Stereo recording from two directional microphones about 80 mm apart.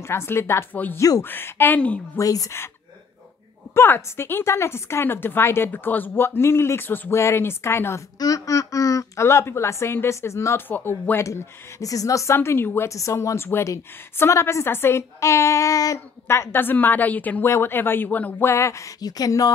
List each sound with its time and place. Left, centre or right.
0.0 s speech: left
0.9 s speech: left
1.2 s a woman's voice: left
2.1 s speech: left
3.7 s speech: left
8.2 s speech: left
10.7 s a woman's voice: left
11.8 s speech: left
12.4 s a woman's voice: left
12.9 s speech: left
16.3 s a woman's voice: left
18.4 s speech: left
18.9 s speech: left